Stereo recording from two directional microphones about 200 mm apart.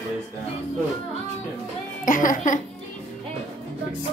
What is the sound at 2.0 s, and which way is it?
Speech, 40° left (ahead or behind).